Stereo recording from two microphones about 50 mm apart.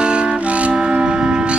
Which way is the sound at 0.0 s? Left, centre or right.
Centre.